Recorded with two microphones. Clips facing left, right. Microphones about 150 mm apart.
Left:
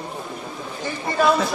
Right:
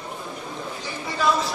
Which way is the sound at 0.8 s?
55° left (ahead or behind).